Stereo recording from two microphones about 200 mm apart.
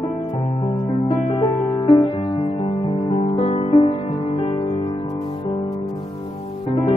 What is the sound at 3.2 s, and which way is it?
Music, 30° left (ahead or behind).